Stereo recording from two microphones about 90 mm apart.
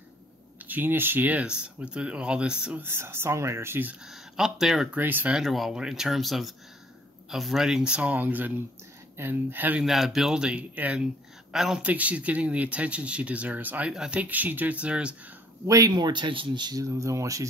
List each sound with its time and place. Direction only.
0.7 s speech: 20° right (ahead or behind)
2.8 s speech: 25° right (ahead or behind)
4.0 s speech: 5° right (ahead or behind)
4.9 s speech: 20° right (ahead or behind)
5.3 s speech: centre (ahead or behind); by 9.8 s 20° right (ahead or behind)
9.8 s speech: centre (ahead or behind)
11.5 s speech: 5° right (ahead or behind)
11.8 s speech: 15° right (ahead or behind)
15.6 s speech: 35° right (ahead or behind)